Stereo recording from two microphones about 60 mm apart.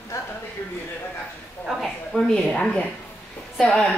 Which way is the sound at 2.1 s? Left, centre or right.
Centre.